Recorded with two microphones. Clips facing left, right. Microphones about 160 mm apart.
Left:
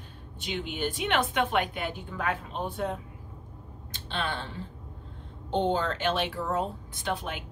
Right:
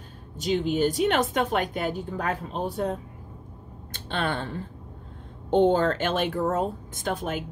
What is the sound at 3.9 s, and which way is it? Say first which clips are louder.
A woman's voice: right 5 dB; 50° right (ahead or behind).